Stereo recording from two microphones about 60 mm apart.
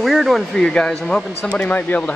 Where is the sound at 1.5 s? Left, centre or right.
Left.